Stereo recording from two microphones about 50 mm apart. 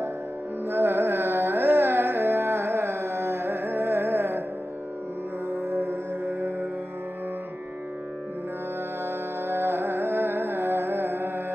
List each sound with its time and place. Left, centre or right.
0.7 s music: right
5.7 s music: right
9.0 s music: right